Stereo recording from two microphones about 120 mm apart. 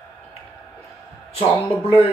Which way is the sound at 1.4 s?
55° left (ahead or behind).